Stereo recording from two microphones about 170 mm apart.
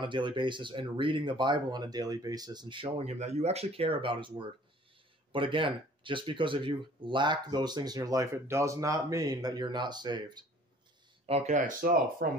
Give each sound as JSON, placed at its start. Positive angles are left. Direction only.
{"t": 0.0, "sound": "speech", "side_deg": -30}
{"t": 11.2, "sound": "speech", "side_deg": -40}